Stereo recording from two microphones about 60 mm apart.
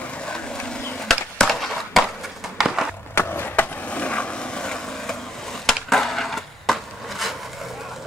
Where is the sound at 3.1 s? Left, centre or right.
Left.